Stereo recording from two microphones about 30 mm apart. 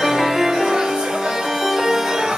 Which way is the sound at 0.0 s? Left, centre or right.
Centre.